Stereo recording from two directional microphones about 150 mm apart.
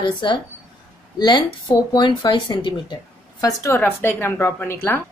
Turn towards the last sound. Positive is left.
turn(degrees=15)  # may be behind; listen again after turning